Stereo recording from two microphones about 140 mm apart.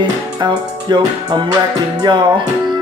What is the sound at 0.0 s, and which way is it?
Music, 35° right (ahead or behind).